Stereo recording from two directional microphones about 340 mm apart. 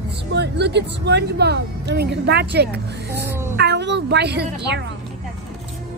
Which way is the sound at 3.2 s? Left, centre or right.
Centre.